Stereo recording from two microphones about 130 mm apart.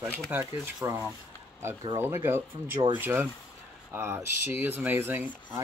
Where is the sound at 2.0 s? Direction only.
20° right (ahead or behind).